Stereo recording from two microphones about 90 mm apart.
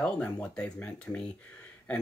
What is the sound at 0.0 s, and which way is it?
Speech, 10° left (ahead or behind).